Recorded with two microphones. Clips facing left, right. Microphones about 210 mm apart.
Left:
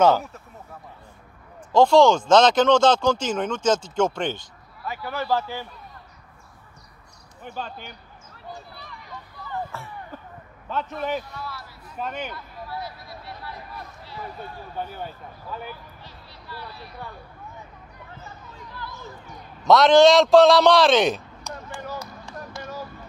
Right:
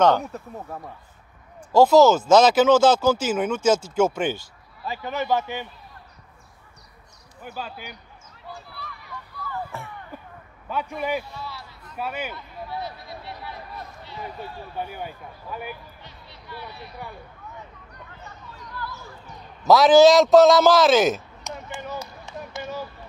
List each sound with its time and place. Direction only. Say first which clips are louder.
1.7 s speech: right 1 dB; 5° right (ahead or behind)
4.8 s a man's voice: right 1 dB; 25° right (ahead or behind)
7.4 s speech: even; 5° right (ahead or behind)
8.5 s run: even; 20° left (ahead or behind)
9.7 s a sound: even; 15° right (ahead or behind)
10.7 s speech: right 1 dB; 10° right (ahead or behind)
11.3 s a man's voice: even; 25° right (ahead or behind)
12.0 s speech: right 1 dB; 10° right (ahead or behind)
12.4 s a sound: right 1 dB; 25° right (ahead or behind)
14.8 s a man's voice: even; 15° right (ahead or behind)
19.6 s a man's voice: right 1 dB; centre (ahead or behind)
21.5 s a sound: right 1 dB; 20° right (ahead or behind)